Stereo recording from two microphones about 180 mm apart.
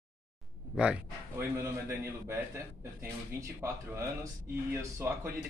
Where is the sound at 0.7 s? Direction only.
5° right (ahead or behind).